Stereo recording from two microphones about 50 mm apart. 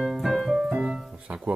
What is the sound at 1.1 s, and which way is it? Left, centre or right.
Music, right.